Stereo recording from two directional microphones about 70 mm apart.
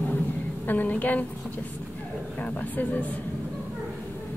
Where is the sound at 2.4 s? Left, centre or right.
Left.